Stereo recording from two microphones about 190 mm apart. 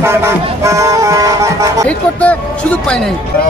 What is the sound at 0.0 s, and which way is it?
Vehicle, 15° right (ahead or behind).